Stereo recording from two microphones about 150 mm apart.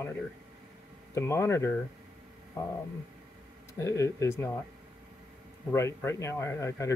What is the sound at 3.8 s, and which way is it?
Speech, 20° left (ahead or behind).